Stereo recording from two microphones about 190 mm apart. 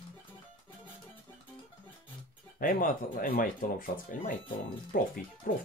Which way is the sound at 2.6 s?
45° left (ahead or behind).